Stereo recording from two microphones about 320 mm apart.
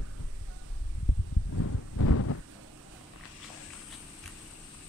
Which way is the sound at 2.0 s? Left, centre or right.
Left.